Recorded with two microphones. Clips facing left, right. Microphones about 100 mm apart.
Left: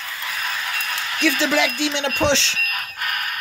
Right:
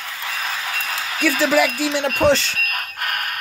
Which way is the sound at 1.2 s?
5° right (ahead or behind).